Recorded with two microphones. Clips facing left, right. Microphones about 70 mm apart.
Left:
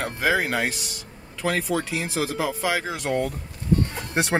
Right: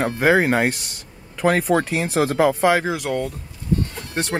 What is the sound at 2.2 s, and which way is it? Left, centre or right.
Speech, right.